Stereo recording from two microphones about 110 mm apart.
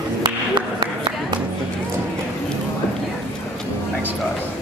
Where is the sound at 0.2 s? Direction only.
45° right (ahead or behind).